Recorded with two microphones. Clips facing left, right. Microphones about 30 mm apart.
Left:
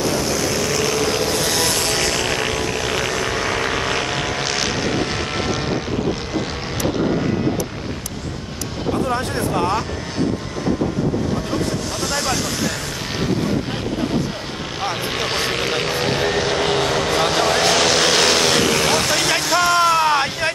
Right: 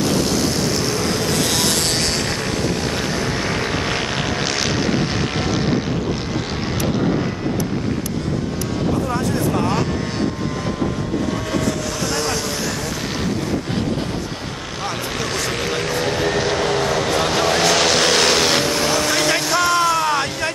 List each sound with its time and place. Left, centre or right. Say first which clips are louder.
3.7 s vehicle: left 1 dB; centre
9.5 s vehicle: left 2 dB; centre
15.6 s vehicle: left 1 dB; centre
18.6 s vehicle: left 2 dB; left
19.0 s vehicle: even; centre